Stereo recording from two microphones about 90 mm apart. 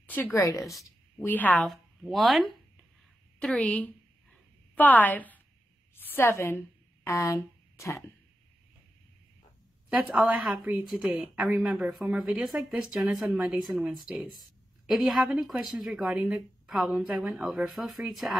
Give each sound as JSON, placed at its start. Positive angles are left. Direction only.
{"t": 0.3, "sound": "speech", "side_deg": 35}
{"t": 0.6, "sound": "speech", "side_deg": 0}
{"t": 1.2, "sound": "a woman's voice", "side_deg": 20}
{"t": 1.7, "sound": "speech", "side_deg": 0}
{"t": 3.3, "sound": "a sound", "side_deg": 10}
{"t": 5.9, "sound": "a woman's voice", "side_deg": 25}
{"t": 7.7, "sound": "a sound", "side_deg": 35}
{"t": 10.2, "sound": "a woman's voice", "side_deg": -10}
{"t": 12.4, "sound": "a woman's voice", "side_deg": 0}